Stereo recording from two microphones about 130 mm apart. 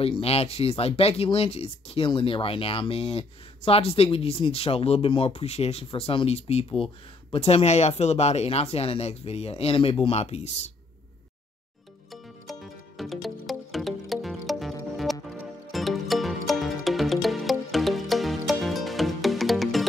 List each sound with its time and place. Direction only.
0.0 s speech: 50° left (ahead or behind)
12.1 s music: centre (ahead or behind)